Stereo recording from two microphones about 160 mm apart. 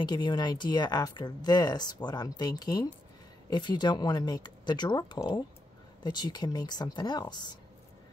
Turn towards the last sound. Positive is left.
turn(degrees=25)  # may be behind; listen again after turning